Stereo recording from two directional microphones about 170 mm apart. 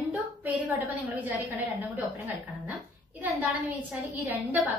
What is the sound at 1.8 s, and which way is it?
A woman's voice, 10° right (ahead or behind).